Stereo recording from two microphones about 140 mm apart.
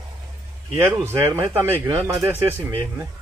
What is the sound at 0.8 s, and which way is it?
Speech, 20° right (ahead or behind).